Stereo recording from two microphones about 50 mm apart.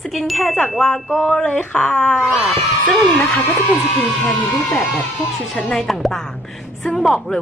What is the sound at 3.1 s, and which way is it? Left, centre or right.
Speech, left.